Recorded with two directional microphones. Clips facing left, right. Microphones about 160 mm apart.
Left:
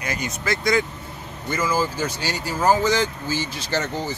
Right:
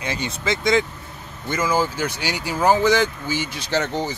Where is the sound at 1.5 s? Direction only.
10° right (ahead or behind).